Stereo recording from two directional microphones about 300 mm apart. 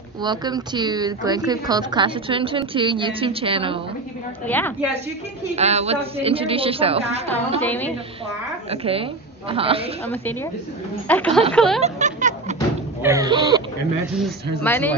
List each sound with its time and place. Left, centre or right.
0.2 s a woman's voice: centre
4.5 s a woman's voice: centre
5.6 s a woman's voice: right
7.6 s speech: centre
8.6 s a woman's voice: centre
10.0 s speech: centre
11.8 s a sound: right
13.0 s a woman's voice: centre
14.1 s speech: centre